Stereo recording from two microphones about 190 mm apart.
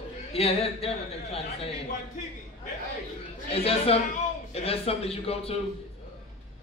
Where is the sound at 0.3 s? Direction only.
30° left (ahead or behind).